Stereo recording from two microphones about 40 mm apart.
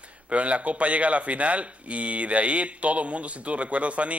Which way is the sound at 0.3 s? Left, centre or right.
Right.